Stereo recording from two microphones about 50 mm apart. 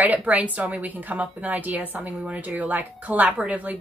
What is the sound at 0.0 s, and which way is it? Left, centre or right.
A woman's voice, right.